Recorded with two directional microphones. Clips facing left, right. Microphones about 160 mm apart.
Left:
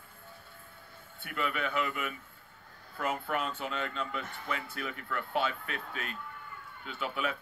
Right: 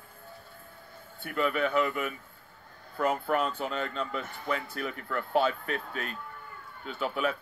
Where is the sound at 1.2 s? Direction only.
40° right (ahead or behind).